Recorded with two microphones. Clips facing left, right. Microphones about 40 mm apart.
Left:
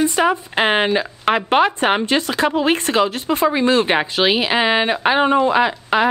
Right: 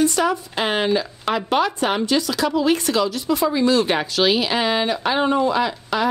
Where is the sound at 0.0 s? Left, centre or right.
Left.